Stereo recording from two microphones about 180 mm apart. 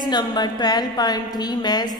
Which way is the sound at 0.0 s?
25° left (ahead or behind).